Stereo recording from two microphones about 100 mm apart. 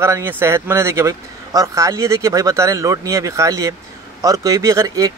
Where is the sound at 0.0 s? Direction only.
25° right (ahead or behind).